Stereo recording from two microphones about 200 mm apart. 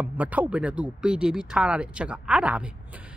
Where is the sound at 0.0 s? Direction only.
5° right (ahead or behind).